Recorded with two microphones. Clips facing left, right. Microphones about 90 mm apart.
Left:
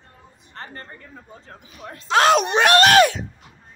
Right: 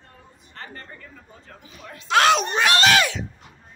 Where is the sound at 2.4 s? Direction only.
70° left (ahead or behind).